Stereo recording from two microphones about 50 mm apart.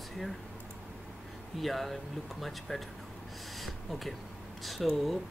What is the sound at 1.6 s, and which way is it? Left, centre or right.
Speech, centre.